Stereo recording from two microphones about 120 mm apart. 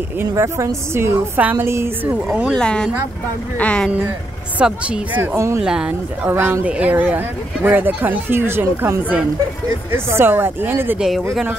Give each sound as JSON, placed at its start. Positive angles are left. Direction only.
{"t": 0.3, "sound": "a woman's voice", "side_deg": -25}
{"t": 2.1, "sound": "speech", "side_deg": -10}
{"t": 2.5, "sound": "speech", "side_deg": 5}
{"t": 4.6, "sound": "speech", "side_deg": -10}
{"t": 5.6, "sound": "speech", "side_deg": -5}
{"t": 6.2, "sound": "speech", "side_deg": -20}
{"t": 11.0, "sound": "speech", "side_deg": 0}